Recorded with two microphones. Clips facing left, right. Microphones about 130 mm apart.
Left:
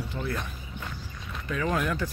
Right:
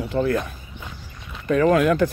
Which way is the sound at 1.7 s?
75° right (ahead or behind).